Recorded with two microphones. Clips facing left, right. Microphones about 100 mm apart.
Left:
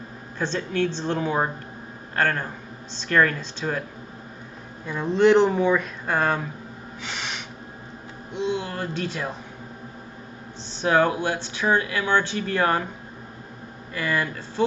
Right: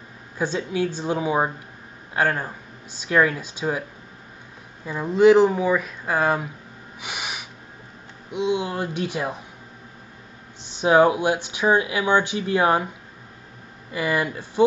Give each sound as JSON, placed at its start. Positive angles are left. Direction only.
{"t": 0.4, "sound": "speech", "side_deg": -10}
{"t": 4.8, "sound": "speech", "side_deg": -5}
{"t": 7.0, "sound": "snort", "side_deg": -10}
{"t": 8.3, "sound": "speech", "side_deg": -15}
{"t": 10.7, "sound": "speech", "side_deg": -15}
{"t": 13.9, "sound": "speech", "side_deg": -15}